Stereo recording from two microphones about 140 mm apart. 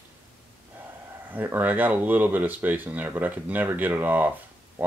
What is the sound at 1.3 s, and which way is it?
Speech, 15° right (ahead or behind).